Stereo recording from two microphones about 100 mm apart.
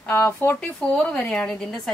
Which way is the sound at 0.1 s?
25° left (ahead or behind).